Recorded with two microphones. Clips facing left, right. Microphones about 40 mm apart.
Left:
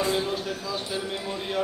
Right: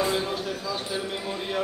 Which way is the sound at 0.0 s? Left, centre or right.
Centre.